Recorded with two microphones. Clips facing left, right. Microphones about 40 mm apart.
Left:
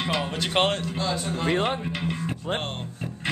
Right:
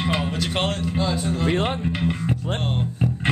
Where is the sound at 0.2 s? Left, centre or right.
Centre.